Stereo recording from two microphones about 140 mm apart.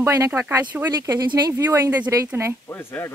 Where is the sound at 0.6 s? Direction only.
10° right (ahead or behind).